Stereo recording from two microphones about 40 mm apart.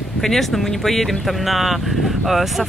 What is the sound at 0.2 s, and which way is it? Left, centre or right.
Speech, centre.